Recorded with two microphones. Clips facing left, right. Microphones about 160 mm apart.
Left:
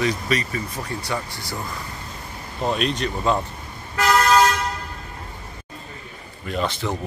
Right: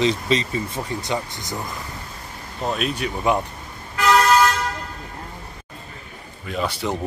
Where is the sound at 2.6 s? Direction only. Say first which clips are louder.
Left 1 dB; centre (ahead or behind).